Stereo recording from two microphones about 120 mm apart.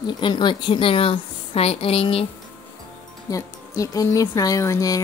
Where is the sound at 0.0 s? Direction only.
40° left (ahead or behind).